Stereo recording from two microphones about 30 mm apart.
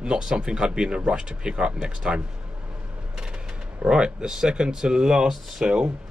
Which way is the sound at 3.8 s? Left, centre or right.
Right.